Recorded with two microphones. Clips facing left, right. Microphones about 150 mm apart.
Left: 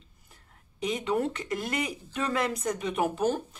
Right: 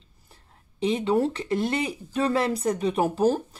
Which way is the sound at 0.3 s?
30° right (ahead or behind).